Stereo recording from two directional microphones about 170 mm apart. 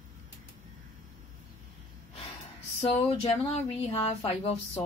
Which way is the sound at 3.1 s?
35° left (ahead or behind).